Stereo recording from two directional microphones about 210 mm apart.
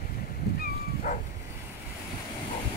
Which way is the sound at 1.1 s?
30° left (ahead or behind).